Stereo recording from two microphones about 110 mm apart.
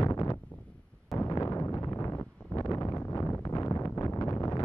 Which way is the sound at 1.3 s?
30° left (ahead or behind).